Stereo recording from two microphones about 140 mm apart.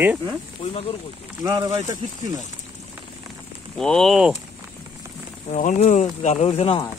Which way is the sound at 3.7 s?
5° left (ahead or behind).